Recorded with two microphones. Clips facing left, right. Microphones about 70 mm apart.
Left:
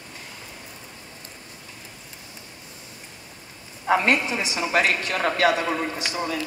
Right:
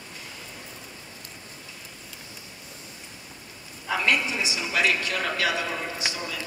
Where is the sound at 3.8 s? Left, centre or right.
Left.